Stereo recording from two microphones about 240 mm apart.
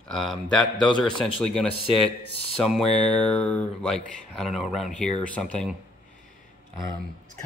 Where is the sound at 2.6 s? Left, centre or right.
Centre.